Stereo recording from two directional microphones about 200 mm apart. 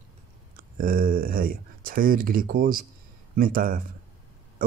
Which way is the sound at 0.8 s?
45° right (ahead or behind).